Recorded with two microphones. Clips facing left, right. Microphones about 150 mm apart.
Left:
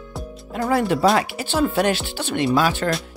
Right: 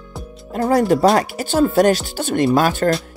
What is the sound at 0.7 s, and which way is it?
Speech, 40° right (ahead or behind).